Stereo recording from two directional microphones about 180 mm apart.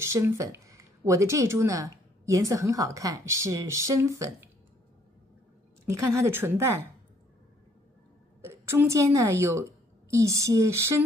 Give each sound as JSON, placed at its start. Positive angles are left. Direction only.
{"t": 0.0, "sound": "speech", "side_deg": -15}
{"t": 5.9, "sound": "speech", "side_deg": -15}
{"t": 8.4, "sound": "a woman's voice", "side_deg": -15}